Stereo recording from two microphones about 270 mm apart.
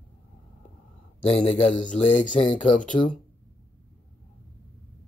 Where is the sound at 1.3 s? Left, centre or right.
Left.